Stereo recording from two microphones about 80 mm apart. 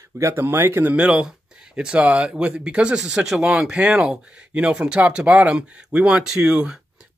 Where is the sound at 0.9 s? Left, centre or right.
Centre.